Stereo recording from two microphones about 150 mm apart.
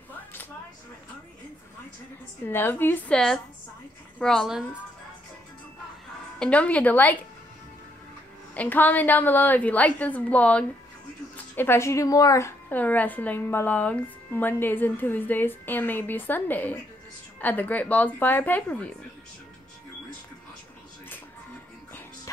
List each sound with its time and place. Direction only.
2.4 s a woman's voice: 15° left (ahead or behind)
6.4 s a woman's voice: 10° left (ahead or behind)
8.5 s a woman's voice: 10° left (ahead or behind)